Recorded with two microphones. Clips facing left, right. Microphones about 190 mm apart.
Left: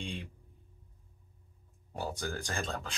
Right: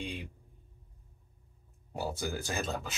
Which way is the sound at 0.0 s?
5° right (ahead or behind).